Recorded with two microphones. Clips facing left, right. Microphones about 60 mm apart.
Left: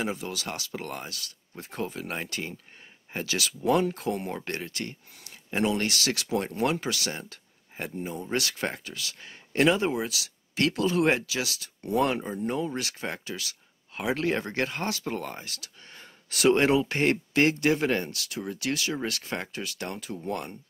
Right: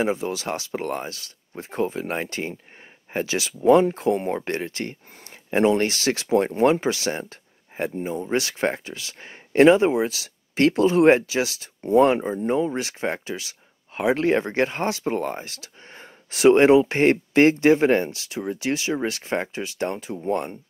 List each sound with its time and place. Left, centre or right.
0.0 s speech: right